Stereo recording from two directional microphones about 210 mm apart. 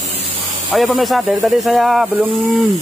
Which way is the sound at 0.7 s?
Centre (ahead or behind).